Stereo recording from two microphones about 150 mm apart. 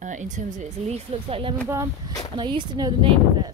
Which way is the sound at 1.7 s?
20° right (ahead or behind).